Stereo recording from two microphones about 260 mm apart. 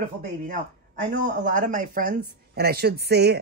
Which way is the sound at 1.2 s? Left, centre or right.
Right.